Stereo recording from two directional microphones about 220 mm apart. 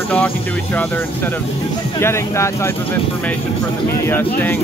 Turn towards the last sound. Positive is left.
turn(degrees=10)  # may be behind; listen again after turning